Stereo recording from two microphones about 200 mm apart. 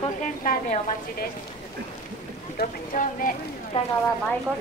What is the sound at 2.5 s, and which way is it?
Speech, 45° left (ahead or behind).